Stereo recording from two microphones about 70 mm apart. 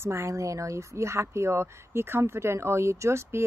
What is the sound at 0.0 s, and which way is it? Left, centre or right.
Speech, right.